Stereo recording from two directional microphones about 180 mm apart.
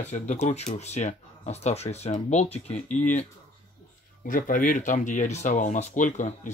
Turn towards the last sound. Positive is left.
turn(degrees=40)  # may be behind; listen again after turning